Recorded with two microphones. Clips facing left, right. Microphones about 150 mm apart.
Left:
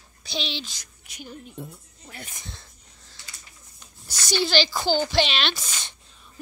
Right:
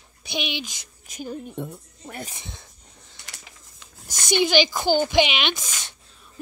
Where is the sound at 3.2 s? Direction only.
90° right.